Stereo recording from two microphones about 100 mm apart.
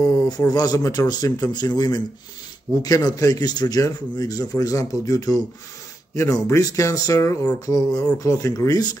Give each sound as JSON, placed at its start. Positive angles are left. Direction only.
{"t": 0.3, "sound": "a man's voice", "side_deg": 40}